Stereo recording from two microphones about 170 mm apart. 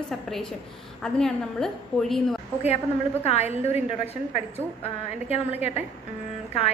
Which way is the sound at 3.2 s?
40° left (ahead or behind).